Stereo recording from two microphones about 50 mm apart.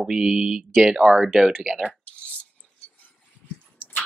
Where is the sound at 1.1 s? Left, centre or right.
Centre.